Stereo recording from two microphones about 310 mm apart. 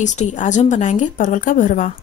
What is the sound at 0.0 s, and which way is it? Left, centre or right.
Speech, left.